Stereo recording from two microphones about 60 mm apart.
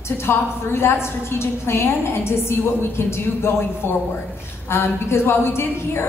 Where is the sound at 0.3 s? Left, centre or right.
Left.